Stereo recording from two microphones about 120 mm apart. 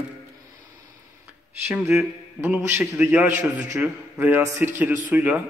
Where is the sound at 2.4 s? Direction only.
15° right (ahead or behind).